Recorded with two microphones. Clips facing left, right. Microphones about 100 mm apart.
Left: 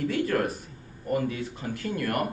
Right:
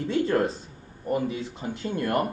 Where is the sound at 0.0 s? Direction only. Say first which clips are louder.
Right 2 dB; 25° right (ahead or behind).